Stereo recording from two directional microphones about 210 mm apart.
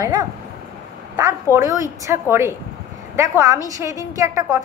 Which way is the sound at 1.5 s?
15° right (ahead or behind).